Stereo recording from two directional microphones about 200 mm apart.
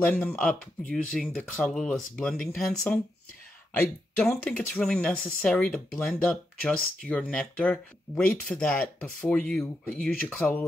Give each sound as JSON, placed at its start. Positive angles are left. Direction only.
{"t": 0.0, "sound": "speech", "side_deg": 10}